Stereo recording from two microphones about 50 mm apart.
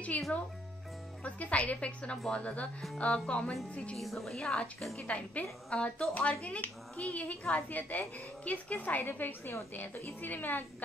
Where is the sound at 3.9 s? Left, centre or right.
Centre.